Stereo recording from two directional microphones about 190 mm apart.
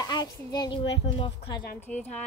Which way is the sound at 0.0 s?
20° left (ahead or behind).